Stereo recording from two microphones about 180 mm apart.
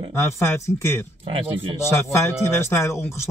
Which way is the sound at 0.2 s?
15° left (ahead or behind).